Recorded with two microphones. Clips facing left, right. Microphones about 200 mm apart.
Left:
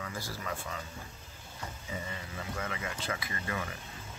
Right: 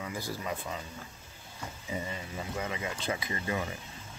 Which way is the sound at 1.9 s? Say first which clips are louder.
Right 5 dB; 20° right (ahead or behind).